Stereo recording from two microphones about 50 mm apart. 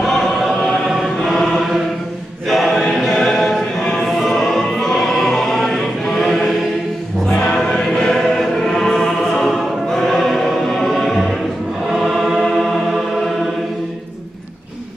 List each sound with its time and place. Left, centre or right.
0.0 s choir: centre
3.8 s a sound: centre
4.2 s choir: centre
7.5 s choir: centre